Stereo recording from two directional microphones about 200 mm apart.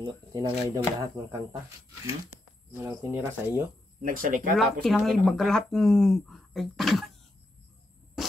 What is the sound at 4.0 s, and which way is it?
Speech, 45° right (ahead or behind).